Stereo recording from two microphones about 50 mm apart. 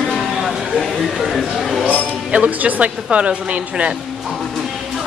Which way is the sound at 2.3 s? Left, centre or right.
Right.